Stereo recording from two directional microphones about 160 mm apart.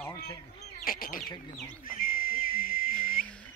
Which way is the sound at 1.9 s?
65° left (ahead or behind).